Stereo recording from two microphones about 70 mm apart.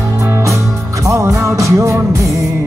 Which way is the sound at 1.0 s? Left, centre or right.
Right.